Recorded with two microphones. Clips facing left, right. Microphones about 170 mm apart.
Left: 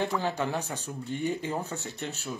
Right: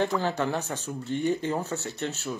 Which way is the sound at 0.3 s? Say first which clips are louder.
Right 2 dB; 10° left (ahead or behind).